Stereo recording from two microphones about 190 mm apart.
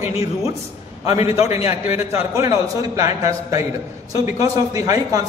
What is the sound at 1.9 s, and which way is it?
A man's voice, 15° right (ahead or behind).